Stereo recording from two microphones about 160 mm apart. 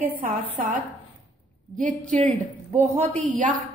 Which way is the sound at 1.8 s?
55° right (ahead or behind).